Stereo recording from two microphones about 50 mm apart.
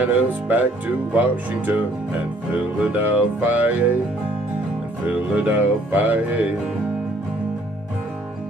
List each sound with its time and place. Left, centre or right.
0.0 s speech: right
5.3 s speech: right